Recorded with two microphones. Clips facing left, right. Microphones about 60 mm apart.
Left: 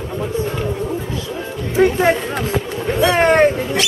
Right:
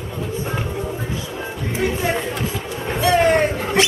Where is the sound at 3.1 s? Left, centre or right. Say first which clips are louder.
Left 2 dB; left.